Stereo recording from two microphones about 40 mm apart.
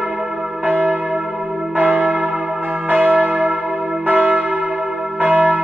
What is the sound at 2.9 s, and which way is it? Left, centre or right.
Church bell, right.